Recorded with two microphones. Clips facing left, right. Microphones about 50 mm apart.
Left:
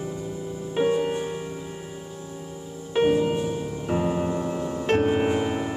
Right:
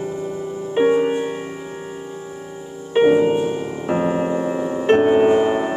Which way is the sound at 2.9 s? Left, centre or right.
Right.